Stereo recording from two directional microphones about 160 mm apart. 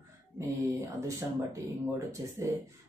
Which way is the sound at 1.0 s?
20° right (ahead or behind).